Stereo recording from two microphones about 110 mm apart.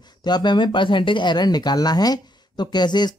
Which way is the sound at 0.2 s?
40° left (ahead or behind).